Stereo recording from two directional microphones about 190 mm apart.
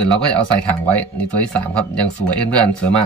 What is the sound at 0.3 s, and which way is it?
Speech, 10° left (ahead or behind).